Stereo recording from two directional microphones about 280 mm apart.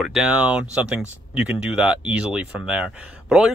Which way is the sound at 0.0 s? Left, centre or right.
Centre.